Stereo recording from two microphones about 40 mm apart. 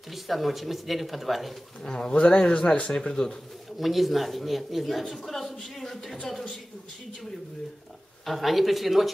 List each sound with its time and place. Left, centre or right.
0.1 s a woman's voice: centre
1.8 s a man's voice: centre
3.0 s speech: centre
3.7 s a woman's voice: centre
8.3 s a woman's voice: centre